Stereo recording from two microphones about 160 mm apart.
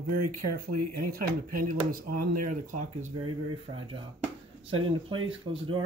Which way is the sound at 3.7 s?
35° right (ahead or behind).